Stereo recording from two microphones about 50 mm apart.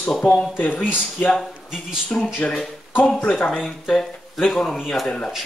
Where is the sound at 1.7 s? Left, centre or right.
Centre.